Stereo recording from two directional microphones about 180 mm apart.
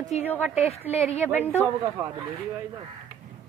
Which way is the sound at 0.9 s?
35° left (ahead or behind).